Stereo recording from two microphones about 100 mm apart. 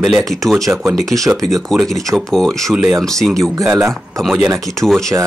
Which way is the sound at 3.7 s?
25° right (ahead or behind).